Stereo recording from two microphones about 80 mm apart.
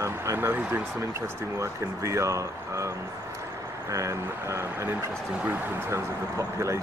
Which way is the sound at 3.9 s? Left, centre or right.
Right.